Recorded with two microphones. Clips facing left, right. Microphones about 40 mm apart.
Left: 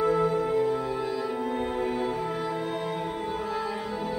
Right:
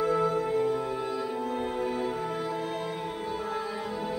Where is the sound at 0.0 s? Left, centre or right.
Centre.